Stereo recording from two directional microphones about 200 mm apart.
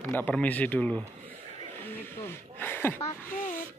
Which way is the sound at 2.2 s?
10° left (ahead or behind).